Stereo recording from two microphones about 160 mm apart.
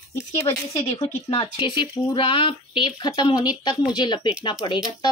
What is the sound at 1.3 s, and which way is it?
Speech, 30° left (ahead or behind).